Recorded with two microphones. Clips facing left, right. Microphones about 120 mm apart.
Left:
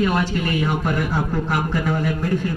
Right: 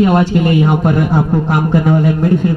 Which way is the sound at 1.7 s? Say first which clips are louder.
Right 9 dB; 25° right (ahead or behind).